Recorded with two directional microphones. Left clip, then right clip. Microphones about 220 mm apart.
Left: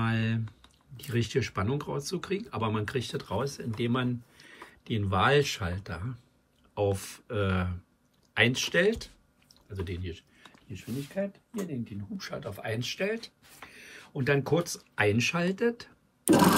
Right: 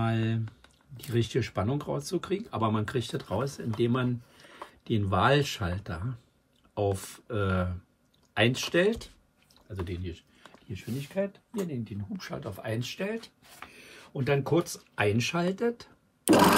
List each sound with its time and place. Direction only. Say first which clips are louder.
0.0 s typing: even; 10° right (ahead or behind)
0.9 s speech: right 1 dB; 10° right (ahead or behind)
12.2 s speech: left 2 dB; 25° right (ahead or behind)
12.4 s speech: left 1 dB; 15° right (ahead or behind)